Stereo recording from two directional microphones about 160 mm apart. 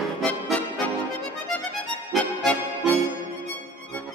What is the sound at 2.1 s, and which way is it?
Music, 5° left (ahead or behind).